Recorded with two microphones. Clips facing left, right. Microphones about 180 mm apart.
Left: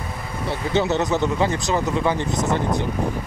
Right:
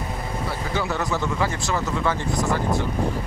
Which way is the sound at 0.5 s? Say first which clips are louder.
Left 7 dB; 25° left (ahead or behind).